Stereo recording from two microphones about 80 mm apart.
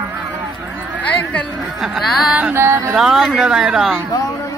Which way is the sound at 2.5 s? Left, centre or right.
Right.